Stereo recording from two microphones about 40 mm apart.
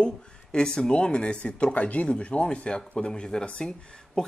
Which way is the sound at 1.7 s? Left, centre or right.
Left.